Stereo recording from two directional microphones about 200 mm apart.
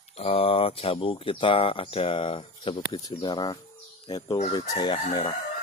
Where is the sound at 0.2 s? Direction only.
30° left (ahead or behind).